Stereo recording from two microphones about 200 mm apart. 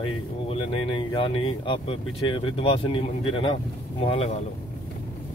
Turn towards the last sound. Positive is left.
turn(degrees=30)  # may be behind; listen again after turning